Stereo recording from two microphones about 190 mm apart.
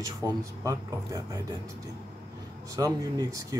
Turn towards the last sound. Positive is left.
turn(degrees=-20)  # may be behind; listen again after turning